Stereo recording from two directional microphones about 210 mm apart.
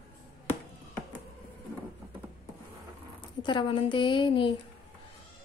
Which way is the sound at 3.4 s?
20° left (ahead or behind).